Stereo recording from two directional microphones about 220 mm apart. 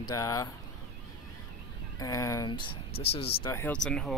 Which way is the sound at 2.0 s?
15° left (ahead or behind).